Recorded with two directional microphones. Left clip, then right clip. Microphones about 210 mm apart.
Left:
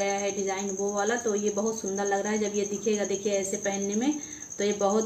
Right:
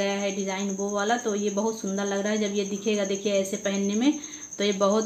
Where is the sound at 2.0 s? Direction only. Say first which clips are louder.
Even; 45° right (ahead or behind).